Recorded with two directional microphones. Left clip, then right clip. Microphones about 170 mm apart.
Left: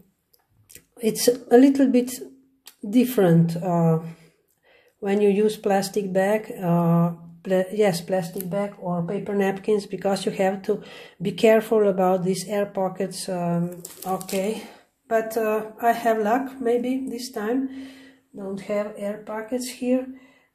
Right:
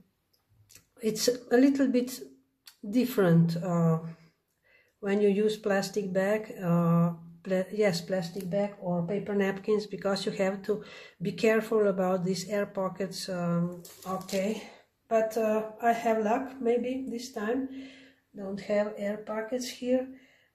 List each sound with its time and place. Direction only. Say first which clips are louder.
0.7 s speech: left 6 dB; 20° left (ahead or behind)
14.0 s speech: left 6 dB; 35° left (ahead or behind)
18.3 s speech: left 3 dB; 20° left (ahead or behind)